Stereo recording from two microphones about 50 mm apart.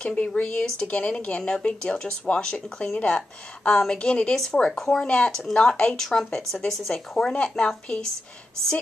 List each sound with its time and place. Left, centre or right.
0.0 s speech: left
5.0 s speech: left